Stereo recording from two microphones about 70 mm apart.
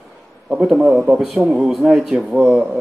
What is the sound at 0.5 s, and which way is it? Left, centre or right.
Speech, centre.